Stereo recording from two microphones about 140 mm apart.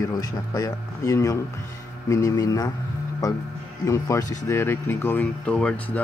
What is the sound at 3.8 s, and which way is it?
Speech, 20° left (ahead or behind).